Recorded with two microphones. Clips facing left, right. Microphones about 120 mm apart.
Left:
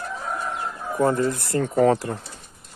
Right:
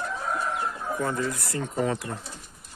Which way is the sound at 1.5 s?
55° left (ahead or behind).